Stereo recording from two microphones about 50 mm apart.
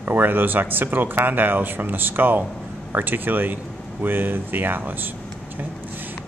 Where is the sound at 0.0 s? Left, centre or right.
Right.